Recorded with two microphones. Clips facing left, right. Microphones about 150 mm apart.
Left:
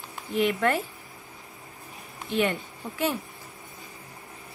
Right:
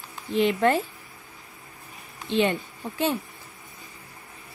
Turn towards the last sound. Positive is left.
turn(degrees=-25)  # may be behind; listen again after turning